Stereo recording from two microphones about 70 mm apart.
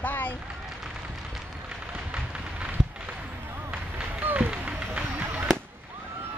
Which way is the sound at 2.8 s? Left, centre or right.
Centre.